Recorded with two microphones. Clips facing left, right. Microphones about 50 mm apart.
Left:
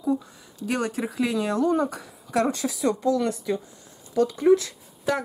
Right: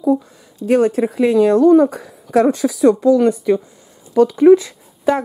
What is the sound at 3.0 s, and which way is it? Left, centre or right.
Speech, right.